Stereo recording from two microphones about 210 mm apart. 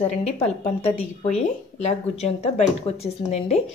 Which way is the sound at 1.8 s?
30° left (ahead or behind).